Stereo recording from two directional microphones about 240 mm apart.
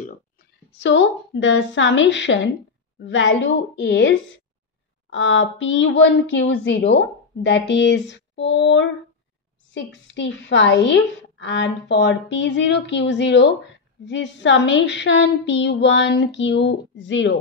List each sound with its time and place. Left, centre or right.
0.7 s a woman's voice: left
10.0 s a woman's voice: left